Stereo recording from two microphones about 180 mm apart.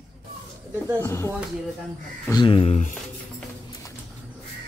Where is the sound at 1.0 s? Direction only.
15° left (ahead or behind).